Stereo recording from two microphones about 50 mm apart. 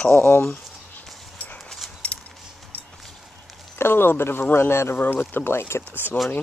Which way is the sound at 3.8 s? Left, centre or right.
Left.